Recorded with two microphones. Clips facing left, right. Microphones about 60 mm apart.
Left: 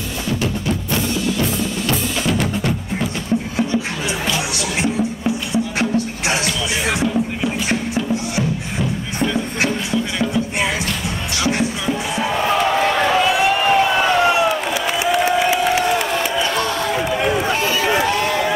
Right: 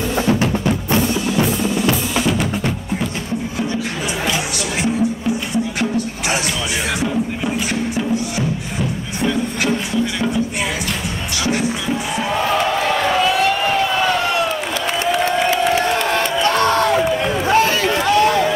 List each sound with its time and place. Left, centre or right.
2.2 s percussion: centre
12.2 s a sound: centre
15.0 s crowd: centre
16.4 s crowd: right
16.9 s a sound: centre
17.6 s run: right
17.8 s run: centre